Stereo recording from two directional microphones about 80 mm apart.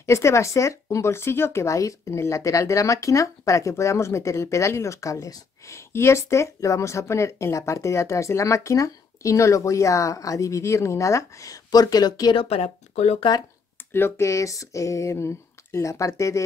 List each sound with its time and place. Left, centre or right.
0.0 s speech: left
13.7 s speech: left